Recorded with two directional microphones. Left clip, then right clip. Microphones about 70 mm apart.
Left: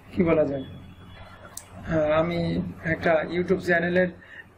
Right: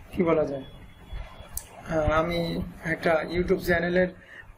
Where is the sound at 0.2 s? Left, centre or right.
Centre.